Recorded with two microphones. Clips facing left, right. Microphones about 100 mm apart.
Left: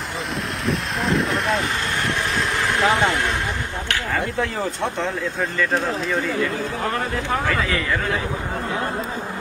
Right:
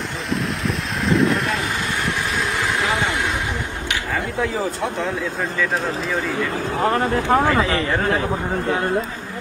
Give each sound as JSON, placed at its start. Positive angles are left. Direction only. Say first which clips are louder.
{"t": 0.7, "sound": "vehicle", "louder": "left 1 dB", "side_deg": 0}
{"t": 4.1, "sound": "speech", "louder": "right 1 dB", "side_deg": 0}
{"t": 6.8, "sound": "speech", "louder": "right 9 dB", "side_deg": -40}
{"t": 7.4, "sound": "speech", "louder": "right 4 dB", "side_deg": -30}